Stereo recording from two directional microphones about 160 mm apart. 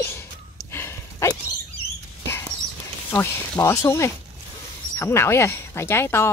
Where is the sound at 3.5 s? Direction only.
20° left (ahead or behind).